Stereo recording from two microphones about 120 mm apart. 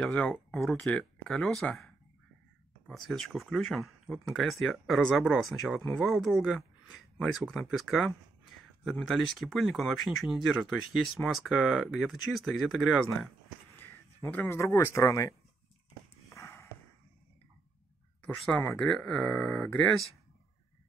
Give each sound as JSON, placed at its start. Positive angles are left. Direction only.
{"t": 0.0, "sound": "speech", "side_deg": 10}
{"t": 2.9, "sound": "speech", "side_deg": 0}
{"t": 13.7, "sound": "a sound", "side_deg": 20}
{"t": 15.0, "sound": "speech", "side_deg": 25}
{"t": 16.3, "sound": "a sound", "side_deg": 20}
{"t": 18.2, "sound": "speech", "side_deg": 10}